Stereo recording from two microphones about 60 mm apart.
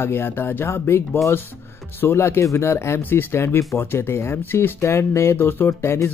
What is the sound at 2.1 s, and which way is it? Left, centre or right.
Speech, left.